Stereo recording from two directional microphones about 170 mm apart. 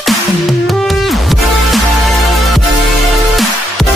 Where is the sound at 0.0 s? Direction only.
Centre (ahead or behind).